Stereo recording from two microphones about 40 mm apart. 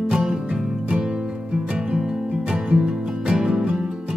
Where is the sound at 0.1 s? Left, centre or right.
Centre.